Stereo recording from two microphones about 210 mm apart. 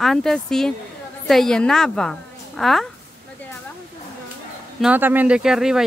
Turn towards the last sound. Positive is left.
turn(degrees=-5)  # may be behind; listen again after turning